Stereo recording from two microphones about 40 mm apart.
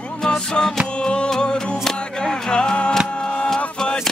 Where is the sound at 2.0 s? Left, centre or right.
Centre.